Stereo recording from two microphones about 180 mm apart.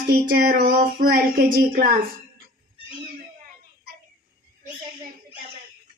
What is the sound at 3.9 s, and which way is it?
Child singing, 60° right (ahead or behind).